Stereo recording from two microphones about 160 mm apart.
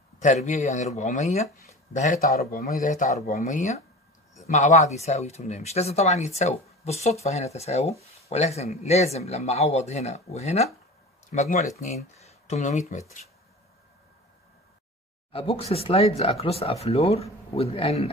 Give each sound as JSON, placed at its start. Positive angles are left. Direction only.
{"t": 0.2, "sound": "speech", "side_deg": 50}
{"t": 2.3, "sound": "speech", "side_deg": 70}
{"t": 15.3, "sound": "speech", "side_deg": 35}